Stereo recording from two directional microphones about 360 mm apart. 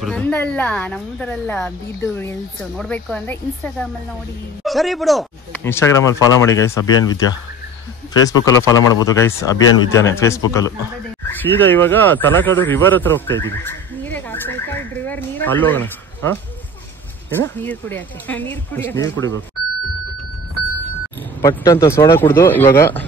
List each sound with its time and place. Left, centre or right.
0.0 s speech: centre
8.7 s speech: left
9.0 s speech: centre
21.4 s speech: centre